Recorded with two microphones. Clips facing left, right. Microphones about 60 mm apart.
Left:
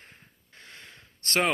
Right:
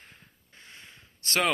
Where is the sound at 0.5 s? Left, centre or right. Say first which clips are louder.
Left 2 dB; left.